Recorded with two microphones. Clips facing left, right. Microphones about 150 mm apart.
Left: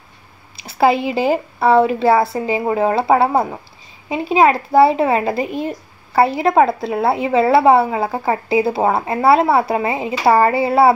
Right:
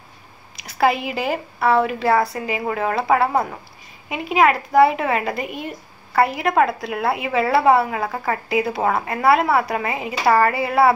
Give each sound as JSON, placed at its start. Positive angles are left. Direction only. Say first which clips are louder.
{"t": 0.6, "sound": "speech", "louder": "left 4 dB", "side_deg": 30}